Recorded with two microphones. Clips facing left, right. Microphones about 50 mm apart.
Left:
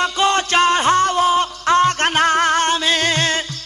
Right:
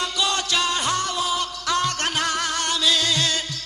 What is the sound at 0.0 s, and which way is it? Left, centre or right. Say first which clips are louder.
Music: left 8 dB; left.